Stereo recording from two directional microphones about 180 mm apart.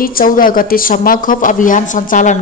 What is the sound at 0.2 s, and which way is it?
Speech, 50° left (ahead or behind).